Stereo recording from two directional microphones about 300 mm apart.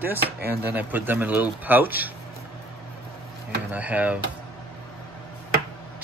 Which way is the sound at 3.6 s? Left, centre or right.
Centre.